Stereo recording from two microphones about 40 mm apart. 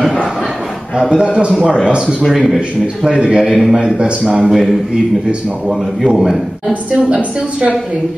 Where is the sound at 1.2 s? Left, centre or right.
Right.